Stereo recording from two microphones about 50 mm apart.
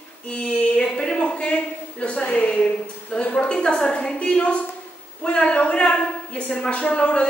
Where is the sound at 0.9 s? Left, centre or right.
Centre.